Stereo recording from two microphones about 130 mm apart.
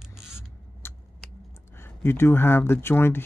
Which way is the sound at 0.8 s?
20° left (ahead or behind).